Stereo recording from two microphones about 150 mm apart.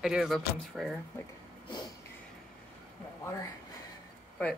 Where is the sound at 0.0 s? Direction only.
5° right (ahead or behind).